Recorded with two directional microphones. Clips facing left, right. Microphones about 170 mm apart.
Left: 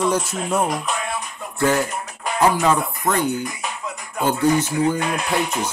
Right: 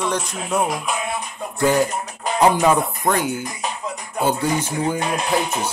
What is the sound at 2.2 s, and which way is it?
Speech, 15° right (ahead or behind).